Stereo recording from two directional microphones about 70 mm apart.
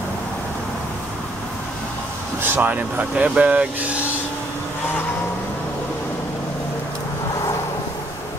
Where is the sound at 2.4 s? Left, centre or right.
Right.